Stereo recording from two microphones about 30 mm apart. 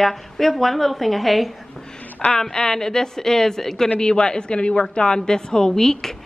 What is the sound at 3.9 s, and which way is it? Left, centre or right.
A woman's voice, left.